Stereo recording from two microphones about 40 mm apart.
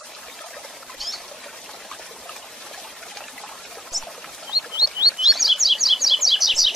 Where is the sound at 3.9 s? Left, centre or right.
Centre.